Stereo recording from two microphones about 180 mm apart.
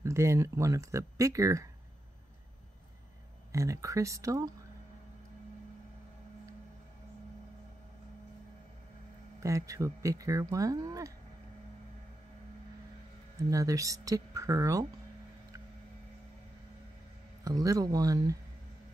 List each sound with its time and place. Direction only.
0.0 s speech: 15° right (ahead or behind)
3.5 s speech: 15° right (ahead or behind)
9.4 s speech: 15° right (ahead or behind)
13.5 s speech: 20° right (ahead or behind)
17.5 s speech: 20° right (ahead or behind)